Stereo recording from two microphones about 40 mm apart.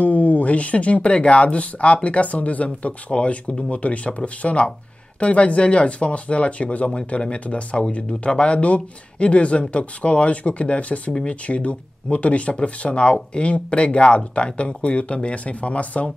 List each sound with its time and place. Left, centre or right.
0.0 s speech: left